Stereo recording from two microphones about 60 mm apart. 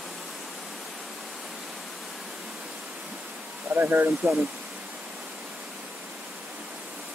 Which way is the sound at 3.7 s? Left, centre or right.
Right.